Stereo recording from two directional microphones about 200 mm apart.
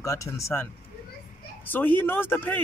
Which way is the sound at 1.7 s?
10° left (ahead or behind).